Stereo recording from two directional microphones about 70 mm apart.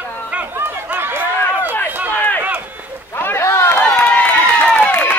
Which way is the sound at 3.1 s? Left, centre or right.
Left.